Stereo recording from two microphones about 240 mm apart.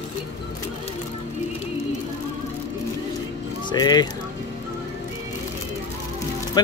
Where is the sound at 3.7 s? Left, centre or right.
Centre.